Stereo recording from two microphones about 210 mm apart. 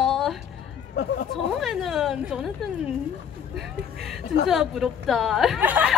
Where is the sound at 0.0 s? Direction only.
Centre (ahead or behind).